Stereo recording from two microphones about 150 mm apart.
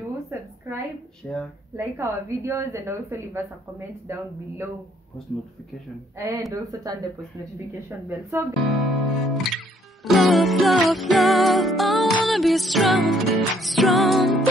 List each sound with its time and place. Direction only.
0.3 s a sound: 15° right (ahead or behind)
1.2 s music: centre (ahead or behind)
1.8 s a woman's voice: 15° right (ahead or behind)
6.1 s speech: 20° right (ahead or behind)
8.3 s a woman's voice: 15° right (ahead or behind)
8.5 s music: centre (ahead or behind)